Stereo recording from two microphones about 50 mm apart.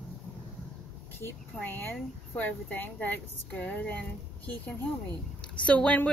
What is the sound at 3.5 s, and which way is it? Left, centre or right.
Speech, left.